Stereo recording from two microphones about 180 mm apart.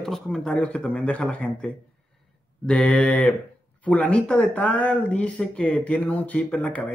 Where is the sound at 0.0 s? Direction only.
Centre (ahead or behind).